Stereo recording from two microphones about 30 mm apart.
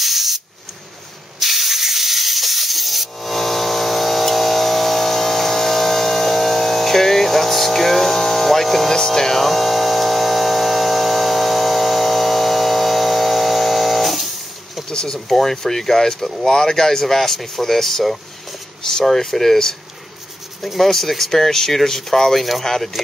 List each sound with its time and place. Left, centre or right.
0.0 s hiss: centre
1.4 s hiss: centre
8.9 s speech: centre
9.4 s mains hum: centre
14.9 s speech: left
15.1 s speech: centre